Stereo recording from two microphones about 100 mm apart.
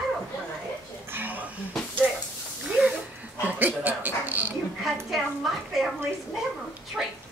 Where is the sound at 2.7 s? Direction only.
10° right (ahead or behind).